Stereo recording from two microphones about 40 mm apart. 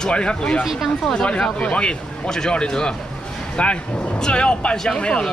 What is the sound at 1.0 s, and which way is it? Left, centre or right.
Speech, left.